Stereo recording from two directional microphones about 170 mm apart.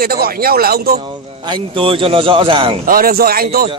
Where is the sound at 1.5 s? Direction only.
30° right (ahead or behind).